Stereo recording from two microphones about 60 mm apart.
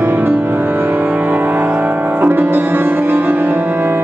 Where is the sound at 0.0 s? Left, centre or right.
Right.